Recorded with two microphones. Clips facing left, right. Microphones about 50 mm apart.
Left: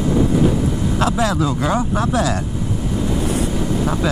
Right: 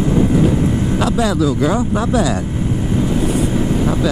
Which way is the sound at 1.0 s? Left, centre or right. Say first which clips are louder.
Right 1 dB; centre.